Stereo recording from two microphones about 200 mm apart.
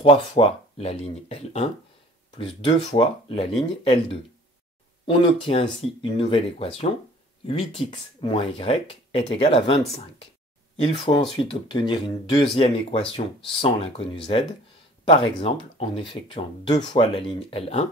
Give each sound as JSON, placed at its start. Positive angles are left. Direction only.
{"t": 0.0, "sound": "speech", "side_deg": 25}